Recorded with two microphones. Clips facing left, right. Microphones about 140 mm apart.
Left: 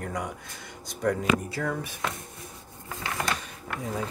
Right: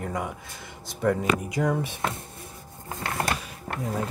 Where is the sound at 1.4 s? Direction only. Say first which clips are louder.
Right 5 dB; 15° right (ahead or behind).